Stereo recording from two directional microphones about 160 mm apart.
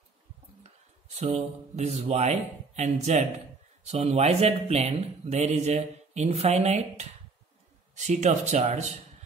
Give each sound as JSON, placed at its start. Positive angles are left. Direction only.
{"t": 0.7, "sound": "speech", "side_deg": -45}